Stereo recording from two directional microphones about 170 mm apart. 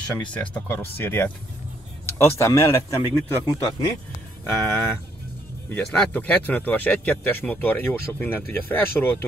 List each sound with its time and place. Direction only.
0.3 s a man's voice: 10° left (ahead or behind)